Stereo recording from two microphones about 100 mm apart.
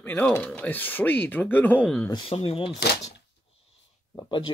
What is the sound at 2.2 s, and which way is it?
Speech, 70° left (ahead or behind).